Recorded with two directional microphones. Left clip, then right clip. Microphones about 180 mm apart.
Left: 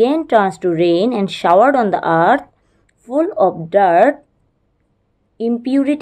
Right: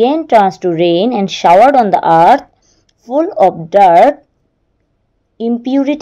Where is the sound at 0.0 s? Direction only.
20° right (ahead or behind).